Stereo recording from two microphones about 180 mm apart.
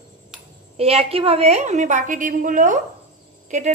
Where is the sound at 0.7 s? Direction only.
30° right (ahead or behind).